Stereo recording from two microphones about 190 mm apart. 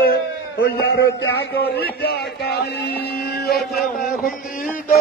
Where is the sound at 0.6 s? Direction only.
65° left (ahead or behind).